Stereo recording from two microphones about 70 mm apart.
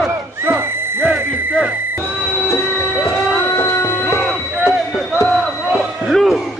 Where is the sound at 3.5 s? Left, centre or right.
Left.